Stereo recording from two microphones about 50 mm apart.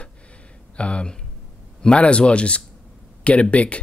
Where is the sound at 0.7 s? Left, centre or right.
Left.